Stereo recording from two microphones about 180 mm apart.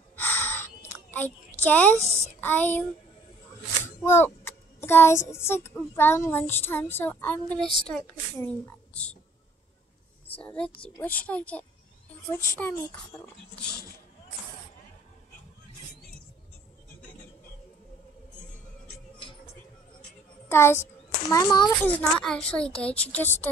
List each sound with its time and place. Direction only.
0.1 s a sound: 10° left (ahead or behind)
1.1 s a woman's voice: 10° left (ahead or behind)
4.0 s child singing: 15° left (ahead or behind)
5.3 s speech: 15° left (ahead or behind)
10.3 s speech: 5° left (ahead or behind)
13.6 s speech: 60° left (ahead or behind)
20.4 s a child's voice: 15° left (ahead or behind)
21.8 s a woman's voice: 5° left (ahead or behind)